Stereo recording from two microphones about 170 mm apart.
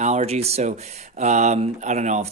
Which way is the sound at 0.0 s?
40° right (ahead or behind).